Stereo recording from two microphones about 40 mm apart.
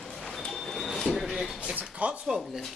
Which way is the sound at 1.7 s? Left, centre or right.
Right.